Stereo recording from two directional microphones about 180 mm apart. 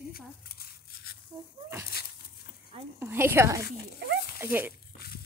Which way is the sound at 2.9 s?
10° right (ahead or behind).